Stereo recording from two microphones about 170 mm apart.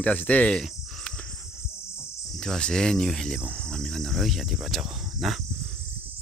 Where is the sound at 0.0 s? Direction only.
10° left (ahead or behind).